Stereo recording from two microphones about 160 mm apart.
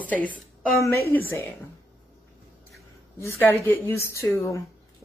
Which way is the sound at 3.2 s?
15° left (ahead or behind).